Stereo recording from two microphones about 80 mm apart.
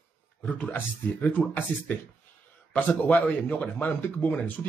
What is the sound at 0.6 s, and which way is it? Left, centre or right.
A man's voice, left.